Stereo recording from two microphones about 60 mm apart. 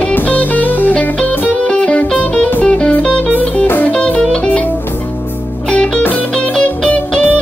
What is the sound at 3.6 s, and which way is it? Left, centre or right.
Music, left.